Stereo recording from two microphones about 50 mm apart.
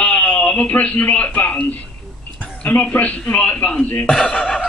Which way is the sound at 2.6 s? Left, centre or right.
Left.